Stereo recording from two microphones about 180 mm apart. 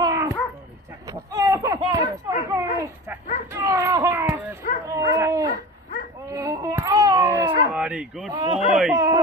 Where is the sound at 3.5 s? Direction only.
15° right (ahead or behind).